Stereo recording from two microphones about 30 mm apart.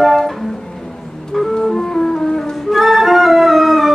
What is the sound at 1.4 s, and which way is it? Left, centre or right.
Organ, centre.